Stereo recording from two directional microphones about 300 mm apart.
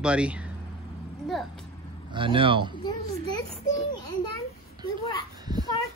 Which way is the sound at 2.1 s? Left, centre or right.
Centre.